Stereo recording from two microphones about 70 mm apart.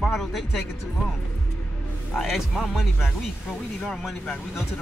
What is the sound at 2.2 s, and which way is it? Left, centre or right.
Speech, centre.